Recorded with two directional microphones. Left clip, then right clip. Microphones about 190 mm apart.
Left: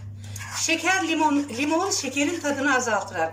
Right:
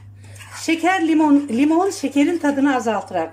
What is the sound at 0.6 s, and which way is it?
Speech, 40° right (ahead or behind).